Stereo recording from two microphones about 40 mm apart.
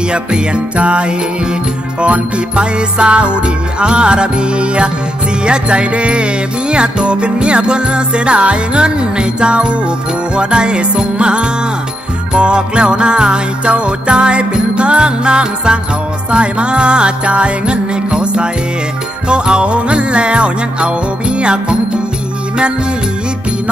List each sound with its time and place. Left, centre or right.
0.1 s music: right